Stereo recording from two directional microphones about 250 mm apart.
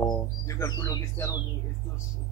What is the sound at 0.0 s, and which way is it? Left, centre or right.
Speech, centre.